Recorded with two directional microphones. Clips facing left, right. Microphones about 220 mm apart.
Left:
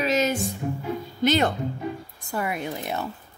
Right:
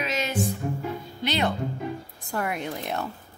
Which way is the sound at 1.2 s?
45° left (ahead or behind).